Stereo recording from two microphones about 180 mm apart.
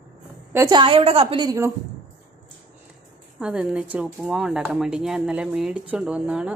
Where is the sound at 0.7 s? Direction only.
30° right (ahead or behind).